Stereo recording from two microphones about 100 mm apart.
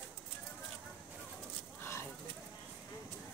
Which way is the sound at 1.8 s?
25° left (ahead or behind).